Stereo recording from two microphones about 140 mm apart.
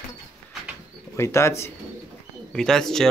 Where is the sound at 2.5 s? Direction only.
5° left (ahead or behind).